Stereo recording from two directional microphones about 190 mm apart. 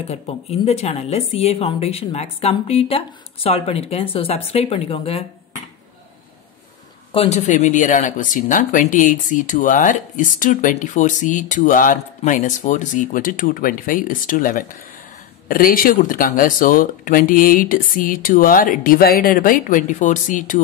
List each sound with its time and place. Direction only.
0.1 s speech: 35° left (ahead or behind)
7.1 s speech: 30° left (ahead or behind)